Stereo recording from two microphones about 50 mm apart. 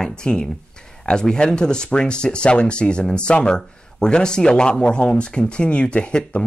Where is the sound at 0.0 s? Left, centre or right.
Centre.